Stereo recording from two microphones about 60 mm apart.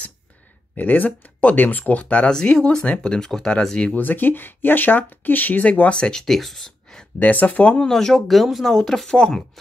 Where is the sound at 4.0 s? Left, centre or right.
Left; by 7.0 s centre.